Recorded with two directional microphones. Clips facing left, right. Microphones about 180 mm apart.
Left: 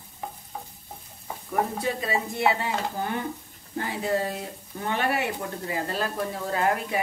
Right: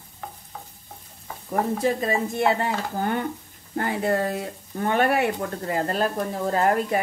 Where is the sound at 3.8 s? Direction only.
55° right (ahead or behind).